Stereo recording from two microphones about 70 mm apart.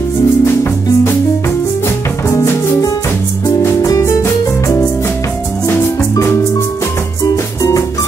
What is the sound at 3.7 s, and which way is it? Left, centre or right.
Music, left.